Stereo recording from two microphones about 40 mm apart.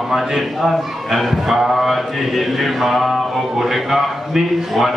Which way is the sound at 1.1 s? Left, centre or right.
Centre.